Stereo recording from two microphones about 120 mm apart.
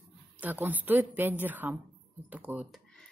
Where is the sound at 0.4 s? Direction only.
15° right (ahead or behind).